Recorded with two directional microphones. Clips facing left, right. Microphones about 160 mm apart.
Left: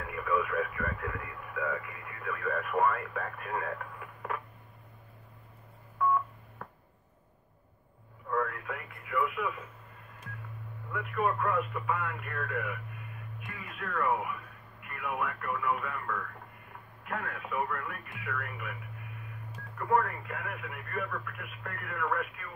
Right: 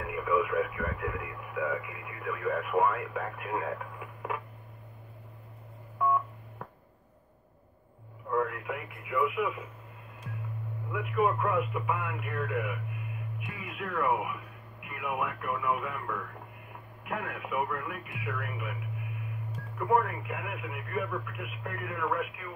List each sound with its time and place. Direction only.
0.0 s speech: 15° right (ahead or behind)
8.3 s speech: 15° right (ahead or behind)
10.9 s speech: 15° right (ahead or behind)
19.9 s speech: 15° right (ahead or behind)